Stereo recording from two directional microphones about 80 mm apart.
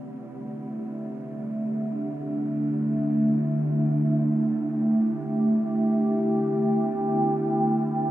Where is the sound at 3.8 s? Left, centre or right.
Right.